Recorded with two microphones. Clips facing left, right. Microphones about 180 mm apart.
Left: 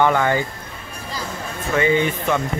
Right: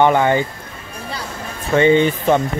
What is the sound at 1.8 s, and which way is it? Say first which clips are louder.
Speech: right 5 dB; 30° right (ahead or behind).